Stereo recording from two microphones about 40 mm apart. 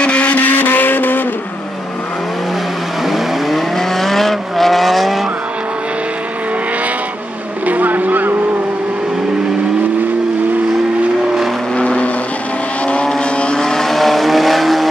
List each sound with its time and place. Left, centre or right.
0.0 s vehicle: left
0.3 s vehicle: left
3.1 s vehicle: centre
7.6 s vehicle: right
11.7 s vehicle: left
13.6 s vehicle: centre